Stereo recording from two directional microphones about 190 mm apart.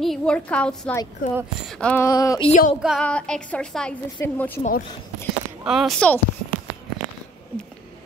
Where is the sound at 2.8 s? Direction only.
Centre (ahead or behind).